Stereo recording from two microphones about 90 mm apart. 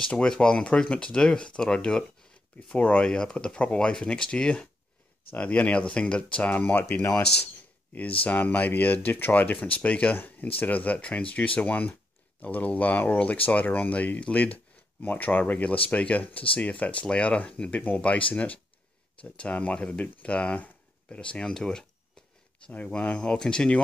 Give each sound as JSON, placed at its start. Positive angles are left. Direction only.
{"t": 0.0, "sound": "speech", "side_deg": 10}